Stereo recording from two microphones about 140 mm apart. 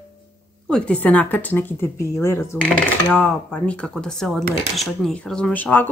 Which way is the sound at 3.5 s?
10° left (ahead or behind).